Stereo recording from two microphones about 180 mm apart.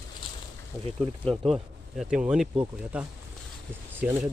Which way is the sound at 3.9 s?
10° right (ahead or behind).